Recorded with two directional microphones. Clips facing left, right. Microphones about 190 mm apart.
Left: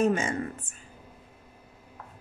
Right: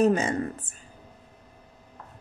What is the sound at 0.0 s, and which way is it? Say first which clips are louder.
Speech: right 3 dB; 35° right (ahead or behind).